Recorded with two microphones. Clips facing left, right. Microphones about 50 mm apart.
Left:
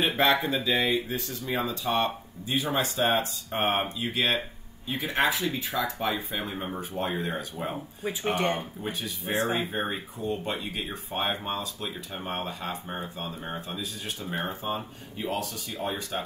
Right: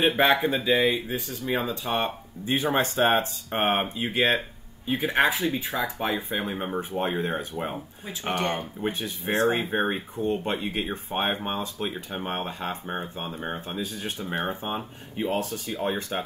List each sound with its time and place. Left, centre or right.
0.0 s speech: right
2.4 s speech: right
5.4 s speech: centre
6.1 s speech: right
8.4 s speech: centre
8.8 s speech: right
14.3 s speech: right